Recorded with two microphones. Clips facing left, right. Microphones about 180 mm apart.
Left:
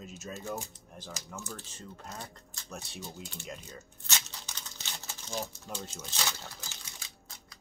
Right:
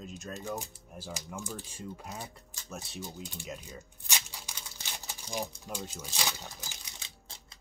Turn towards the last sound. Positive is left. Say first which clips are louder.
# even
turn(degrees=-25)  # may be behind; listen again after turning